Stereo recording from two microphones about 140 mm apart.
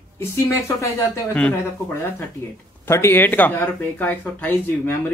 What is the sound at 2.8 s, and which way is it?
Speech, 20° left (ahead or behind).